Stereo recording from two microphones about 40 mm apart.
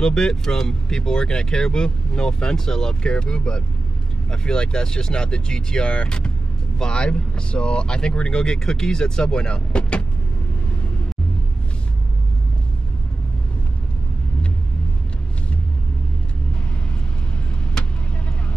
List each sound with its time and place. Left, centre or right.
0.0 s speech: centre